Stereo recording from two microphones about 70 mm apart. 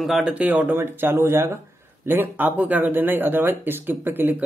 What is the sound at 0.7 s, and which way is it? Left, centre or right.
Speech, right.